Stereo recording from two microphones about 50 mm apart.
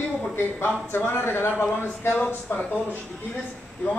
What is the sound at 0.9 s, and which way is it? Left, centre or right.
Speech, left.